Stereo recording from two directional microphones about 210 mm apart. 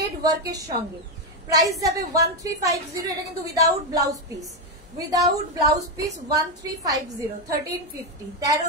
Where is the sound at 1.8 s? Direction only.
15° right (ahead or behind).